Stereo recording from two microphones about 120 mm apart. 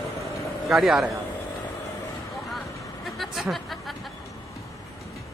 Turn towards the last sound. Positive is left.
turn(degrees=0)  # may be behind; listen again after turning